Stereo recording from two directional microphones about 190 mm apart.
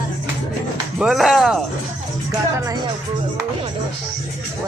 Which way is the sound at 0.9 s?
Centre (ahead or behind).